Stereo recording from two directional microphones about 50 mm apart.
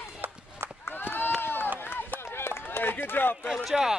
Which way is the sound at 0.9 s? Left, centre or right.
Left.